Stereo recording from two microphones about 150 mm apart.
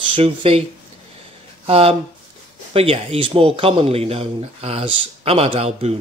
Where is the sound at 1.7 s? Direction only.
40° right (ahead or behind).